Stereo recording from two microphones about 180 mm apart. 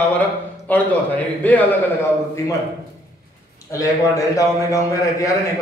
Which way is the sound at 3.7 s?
15° left (ahead or behind).